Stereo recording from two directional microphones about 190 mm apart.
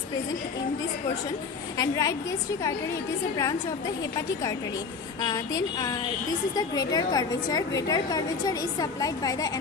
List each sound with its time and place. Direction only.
1.8 s a woman's voice: 15° left (ahead or behind)
5.2 s a woman's voice: 20° left (ahead or behind)